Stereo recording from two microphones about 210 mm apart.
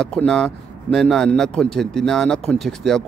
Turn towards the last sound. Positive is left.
turn(degrees=0)  # may be behind; listen again after turning